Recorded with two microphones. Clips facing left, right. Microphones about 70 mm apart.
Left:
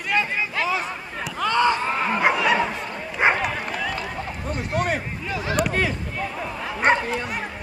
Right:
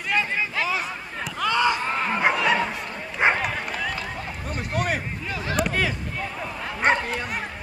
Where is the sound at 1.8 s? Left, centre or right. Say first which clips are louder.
Left 2 dB; centre.